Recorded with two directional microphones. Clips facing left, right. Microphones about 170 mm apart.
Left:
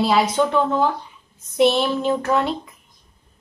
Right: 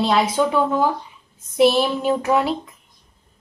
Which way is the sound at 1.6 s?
5° right (ahead or behind).